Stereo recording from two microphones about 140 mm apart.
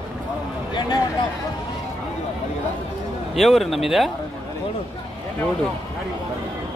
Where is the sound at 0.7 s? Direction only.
30° left (ahead or behind).